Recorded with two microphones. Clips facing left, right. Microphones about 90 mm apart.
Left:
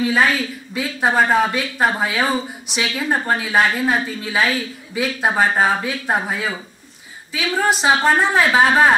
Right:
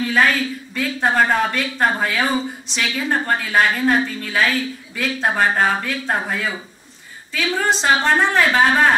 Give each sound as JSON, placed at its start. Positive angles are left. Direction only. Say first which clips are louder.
{"t": 0.0, "sound": "a woman's voice", "louder": "even", "side_deg": 10}